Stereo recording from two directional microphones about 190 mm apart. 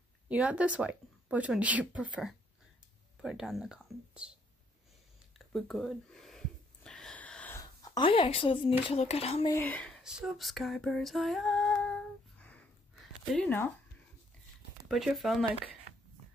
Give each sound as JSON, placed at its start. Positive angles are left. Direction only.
{"t": 0.3, "sound": "speech", "side_deg": -5}
{"t": 5.5, "sound": "a sound", "side_deg": 0}
{"t": 9.5, "sound": "speech", "side_deg": 10}
{"t": 10.0, "sound": "female singing", "side_deg": 0}
{"t": 14.9, "sound": "speech", "side_deg": 0}